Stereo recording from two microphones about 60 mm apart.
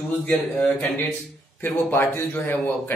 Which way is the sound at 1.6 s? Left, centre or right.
Left.